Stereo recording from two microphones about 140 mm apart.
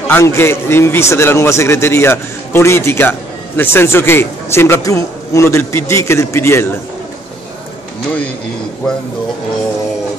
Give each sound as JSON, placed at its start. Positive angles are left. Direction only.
{"t": 0.1, "sound": "a man's voice", "side_deg": 20}